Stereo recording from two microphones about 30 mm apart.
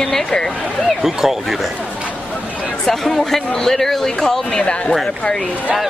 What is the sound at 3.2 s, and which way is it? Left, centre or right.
A man's voice, centre.